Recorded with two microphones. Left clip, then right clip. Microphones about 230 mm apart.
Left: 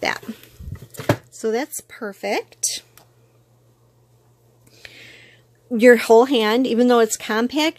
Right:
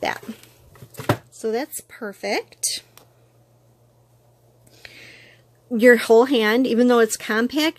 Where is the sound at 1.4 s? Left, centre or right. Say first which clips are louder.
Left 2 dB; centre.